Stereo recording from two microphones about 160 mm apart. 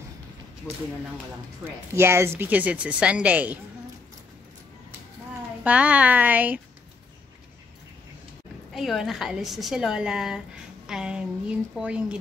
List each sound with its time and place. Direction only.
0.7 s speech: 10° left (ahead or behind)
1.6 s speech: 15° right (ahead or behind)
5.6 s speech: 10° right (ahead or behind)
8.7 s a woman's voice: centre (ahead or behind)